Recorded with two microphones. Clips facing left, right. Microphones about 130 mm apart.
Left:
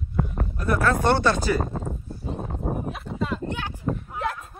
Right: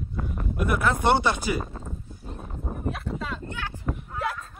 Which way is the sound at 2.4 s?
45° left (ahead or behind).